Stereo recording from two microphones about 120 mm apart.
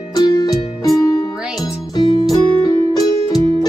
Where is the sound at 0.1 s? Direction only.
35° left (ahead or behind).